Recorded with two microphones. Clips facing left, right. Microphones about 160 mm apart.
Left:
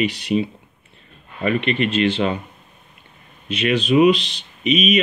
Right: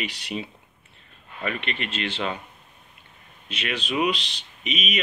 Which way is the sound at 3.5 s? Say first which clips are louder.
Left 11 dB; 55° left (ahead or behind).